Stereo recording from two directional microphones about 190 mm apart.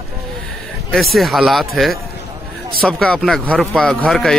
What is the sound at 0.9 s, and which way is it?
Speech, centre (ahead or behind).